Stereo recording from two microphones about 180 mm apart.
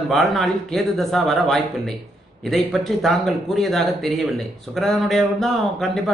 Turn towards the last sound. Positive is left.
turn(degrees=0)  # may be behind; listen again after turning